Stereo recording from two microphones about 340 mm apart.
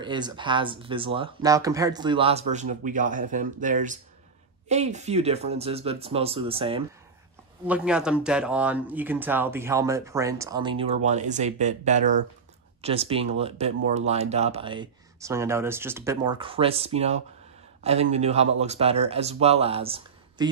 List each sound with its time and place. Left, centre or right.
0.0 s speech: centre
7.6 s a man's voice: centre